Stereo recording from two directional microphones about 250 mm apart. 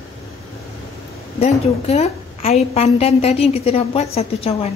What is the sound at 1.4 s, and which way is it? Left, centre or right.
A woman's voice, left.